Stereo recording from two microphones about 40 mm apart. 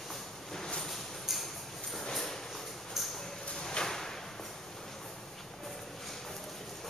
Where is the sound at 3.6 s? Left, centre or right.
Centre.